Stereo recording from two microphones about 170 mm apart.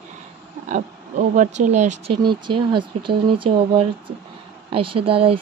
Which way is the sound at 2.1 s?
30° right (ahead or behind).